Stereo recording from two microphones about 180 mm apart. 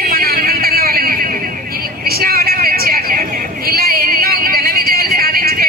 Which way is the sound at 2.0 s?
60° right (ahead or behind).